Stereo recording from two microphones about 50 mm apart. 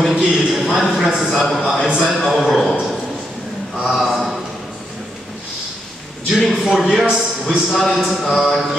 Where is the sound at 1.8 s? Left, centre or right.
Centre.